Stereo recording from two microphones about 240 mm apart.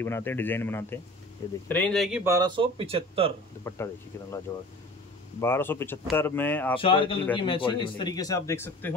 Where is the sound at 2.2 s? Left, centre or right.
Centre.